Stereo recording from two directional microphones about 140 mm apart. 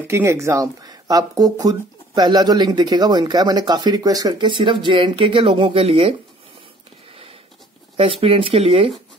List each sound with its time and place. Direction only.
0.0 s speech: 20° right (ahead or behind); by 6.1 s 45° right (ahead or behind)
8.0 s speech: 40° right (ahead or behind)